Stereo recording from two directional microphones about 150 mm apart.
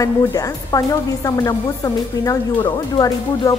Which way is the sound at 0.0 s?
25° left (ahead or behind).